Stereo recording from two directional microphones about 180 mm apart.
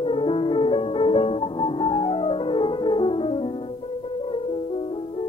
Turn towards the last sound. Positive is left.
turn(degrees=30)  # may be behind; listen again after turning